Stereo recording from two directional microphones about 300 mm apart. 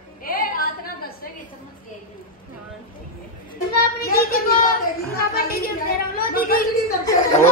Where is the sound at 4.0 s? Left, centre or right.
Left.